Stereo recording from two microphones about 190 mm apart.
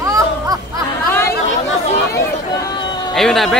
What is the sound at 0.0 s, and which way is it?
Music, 15° right (ahead or behind).